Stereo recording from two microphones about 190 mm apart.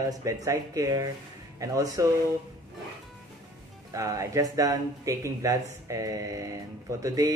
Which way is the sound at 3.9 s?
15° right (ahead or behind).